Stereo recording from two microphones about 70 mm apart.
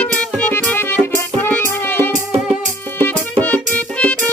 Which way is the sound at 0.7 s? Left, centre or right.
Left.